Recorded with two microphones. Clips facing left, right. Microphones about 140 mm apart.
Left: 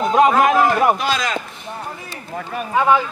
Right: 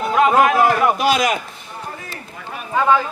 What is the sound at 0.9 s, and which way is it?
Speech, 20° right (ahead or behind).